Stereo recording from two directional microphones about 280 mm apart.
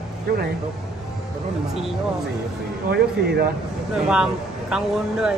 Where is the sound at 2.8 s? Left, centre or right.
Right.